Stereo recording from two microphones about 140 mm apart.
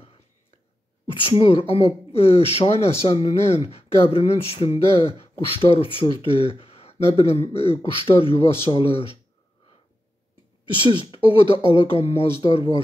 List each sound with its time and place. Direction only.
1.2 s speech: 40° left (ahead or behind)
10.7 s speech: 40° left (ahead or behind)